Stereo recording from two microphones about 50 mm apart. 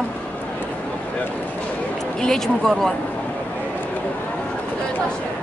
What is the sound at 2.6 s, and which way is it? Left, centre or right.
Speech, centre.